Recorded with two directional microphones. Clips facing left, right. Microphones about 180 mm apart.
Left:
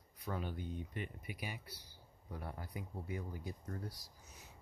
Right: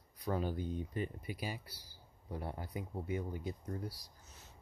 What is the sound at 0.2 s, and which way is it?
Speech, 35° right (ahead or behind).